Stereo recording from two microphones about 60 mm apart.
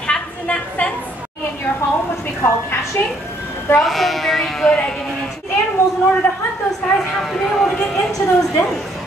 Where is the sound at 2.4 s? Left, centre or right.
Left.